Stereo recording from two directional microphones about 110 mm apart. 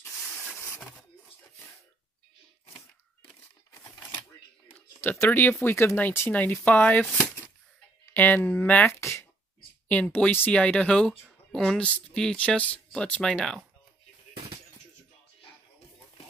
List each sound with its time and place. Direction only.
0.2 s vehicle: 10° left (ahead or behind)
4.6 s speech: 20° left (ahead or behind)